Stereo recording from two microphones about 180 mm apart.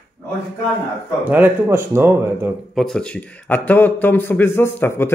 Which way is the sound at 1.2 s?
10° right (ahead or behind).